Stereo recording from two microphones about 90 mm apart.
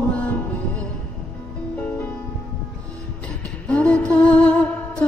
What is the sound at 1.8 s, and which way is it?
Music, 20° left (ahead or behind).